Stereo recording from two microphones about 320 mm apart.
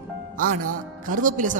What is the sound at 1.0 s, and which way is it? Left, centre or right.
Speech, right.